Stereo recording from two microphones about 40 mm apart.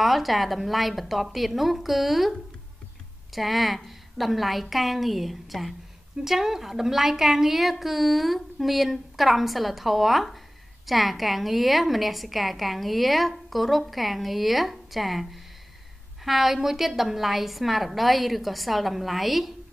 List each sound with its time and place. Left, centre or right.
0.0 s a woman's voice: centre
3.3 s a woman's voice: centre
16.3 s a woman's voice: centre